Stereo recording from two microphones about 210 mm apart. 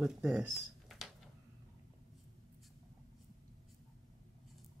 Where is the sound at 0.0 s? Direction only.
5° right (ahead or behind).